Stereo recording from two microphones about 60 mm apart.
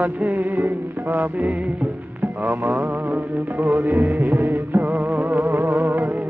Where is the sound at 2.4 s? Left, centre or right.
Right.